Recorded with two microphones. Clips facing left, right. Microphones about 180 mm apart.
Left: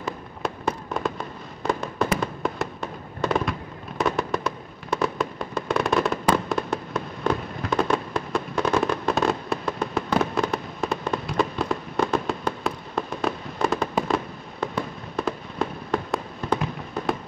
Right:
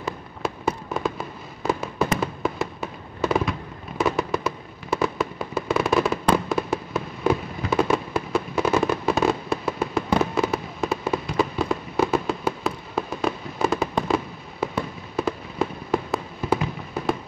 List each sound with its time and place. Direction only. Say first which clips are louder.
0.0 s fireworks: right 1 dB; centre (ahead or behind)